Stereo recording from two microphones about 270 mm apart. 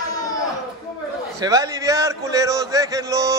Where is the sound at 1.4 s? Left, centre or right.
Centre.